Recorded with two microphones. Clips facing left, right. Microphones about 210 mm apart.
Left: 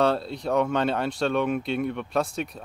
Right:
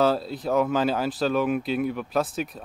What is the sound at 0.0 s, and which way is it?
Speech, centre (ahead or behind).